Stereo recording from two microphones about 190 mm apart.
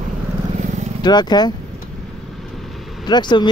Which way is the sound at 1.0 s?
20° left (ahead or behind).